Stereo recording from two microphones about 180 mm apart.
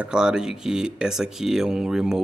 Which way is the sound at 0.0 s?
5° right (ahead or behind).